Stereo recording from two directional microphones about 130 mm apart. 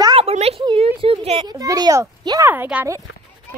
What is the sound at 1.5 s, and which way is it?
A child's voice, 30° right (ahead or behind).